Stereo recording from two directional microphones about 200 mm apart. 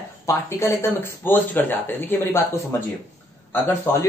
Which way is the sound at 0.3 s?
15° left (ahead or behind).